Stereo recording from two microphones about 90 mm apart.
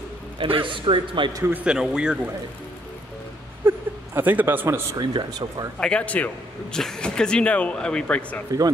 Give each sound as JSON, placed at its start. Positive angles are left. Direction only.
{"t": 0.4, "sound": "a man's voice", "side_deg": -80}
{"t": 1.6, "sound": "speech", "side_deg": -10}
{"t": 3.6, "sound": "a sound", "side_deg": -25}
{"t": 4.9, "sound": "speech", "side_deg": -50}
{"t": 5.8, "sound": "speech", "side_deg": 10}